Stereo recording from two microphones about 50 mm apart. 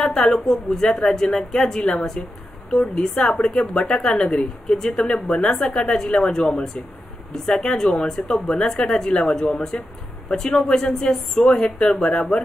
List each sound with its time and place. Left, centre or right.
0.0 s a woman's voice: centre